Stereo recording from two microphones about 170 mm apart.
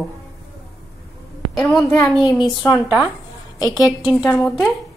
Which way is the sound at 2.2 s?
25° left (ahead or behind).